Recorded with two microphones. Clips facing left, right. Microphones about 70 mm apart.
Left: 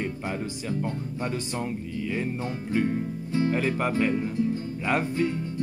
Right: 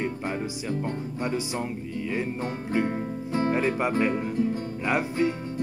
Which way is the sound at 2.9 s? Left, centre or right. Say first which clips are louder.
Even; right.